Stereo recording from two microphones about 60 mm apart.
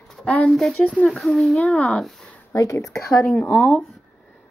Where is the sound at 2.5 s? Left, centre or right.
Left.